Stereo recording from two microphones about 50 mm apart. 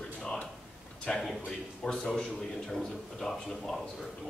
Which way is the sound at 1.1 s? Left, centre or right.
Centre.